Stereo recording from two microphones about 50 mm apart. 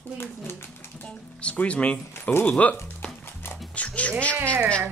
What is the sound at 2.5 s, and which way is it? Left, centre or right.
Speech, left.